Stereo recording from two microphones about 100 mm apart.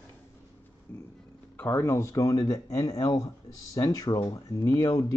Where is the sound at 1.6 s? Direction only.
25° left (ahead or behind).